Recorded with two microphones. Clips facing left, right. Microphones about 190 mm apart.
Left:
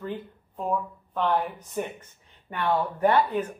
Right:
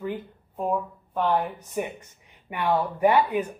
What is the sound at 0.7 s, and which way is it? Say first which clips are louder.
Speech: right 1 dB; 10° right (ahead or behind).